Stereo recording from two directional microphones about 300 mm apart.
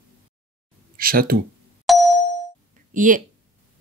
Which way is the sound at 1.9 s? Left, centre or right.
Centre.